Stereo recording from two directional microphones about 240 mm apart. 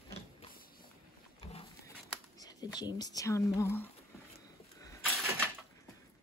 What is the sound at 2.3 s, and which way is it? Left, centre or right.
Speech, centre.